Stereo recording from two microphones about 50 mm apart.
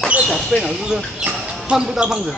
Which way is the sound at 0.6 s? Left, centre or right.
Centre.